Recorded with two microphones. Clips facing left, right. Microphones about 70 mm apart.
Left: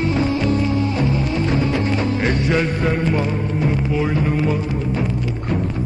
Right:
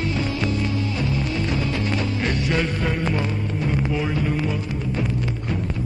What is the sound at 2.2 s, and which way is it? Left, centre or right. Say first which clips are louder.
Music: left 4 dB; left.